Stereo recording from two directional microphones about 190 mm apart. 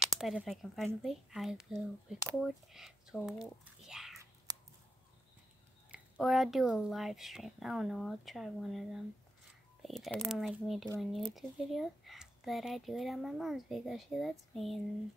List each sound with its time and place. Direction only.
0.0 s speech: centre (ahead or behind)
4.5 s a sound: 20° right (ahead or behind)
5.9 s speech: 5° right (ahead or behind)